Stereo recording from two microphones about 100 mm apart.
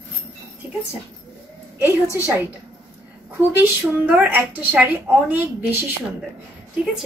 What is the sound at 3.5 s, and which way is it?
Speech, 20° right (ahead or behind).